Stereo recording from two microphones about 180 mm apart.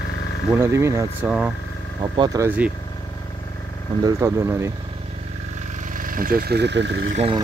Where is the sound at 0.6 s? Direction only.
15° right (ahead or behind).